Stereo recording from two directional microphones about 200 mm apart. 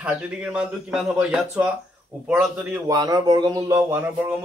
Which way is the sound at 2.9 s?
20° right (ahead or behind).